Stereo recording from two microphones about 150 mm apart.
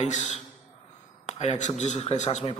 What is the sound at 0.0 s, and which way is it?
A man's voice, 55° left (ahead or behind).